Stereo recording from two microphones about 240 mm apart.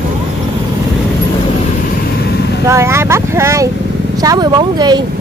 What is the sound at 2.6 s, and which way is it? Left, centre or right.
Speech, centre.